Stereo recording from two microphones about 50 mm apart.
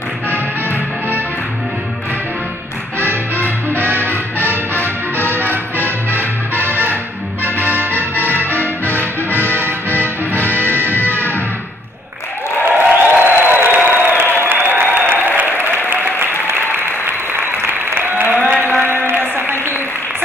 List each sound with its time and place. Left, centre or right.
3.0 s music: right
4.0 s music: left
7.6 s music: right
8.5 s music: left
10.5 s music: left
12.6 s a sound: right
14.5 s applause: right
18.3 s a sound: right